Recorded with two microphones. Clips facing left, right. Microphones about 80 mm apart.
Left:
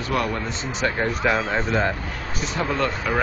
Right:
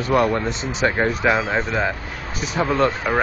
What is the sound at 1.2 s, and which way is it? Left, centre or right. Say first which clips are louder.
Speech: right 2 dB; centre.